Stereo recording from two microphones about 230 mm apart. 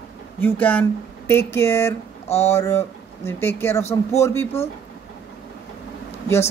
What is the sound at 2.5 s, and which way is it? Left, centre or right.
Speech, centre.